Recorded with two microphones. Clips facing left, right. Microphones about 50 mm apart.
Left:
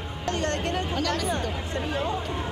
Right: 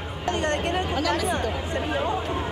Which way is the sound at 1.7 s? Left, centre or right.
Right.